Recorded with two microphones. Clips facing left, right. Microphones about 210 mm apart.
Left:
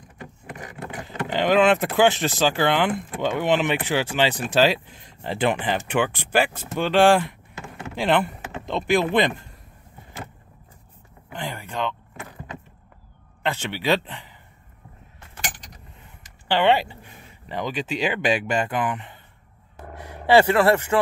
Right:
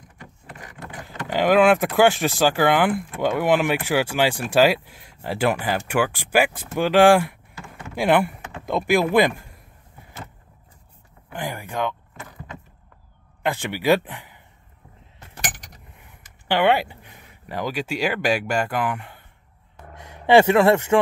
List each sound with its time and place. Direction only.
1.3 s speech: 10° right (ahead or behind)
11.3 s speech: 15° right (ahead or behind)
13.4 s speech: 10° right (ahead or behind)
16.0 s speech: 10° right (ahead or behind)
20.2 s speech: 20° right (ahead or behind)